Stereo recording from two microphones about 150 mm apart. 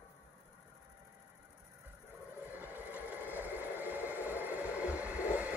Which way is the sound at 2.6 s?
10° right (ahead or behind).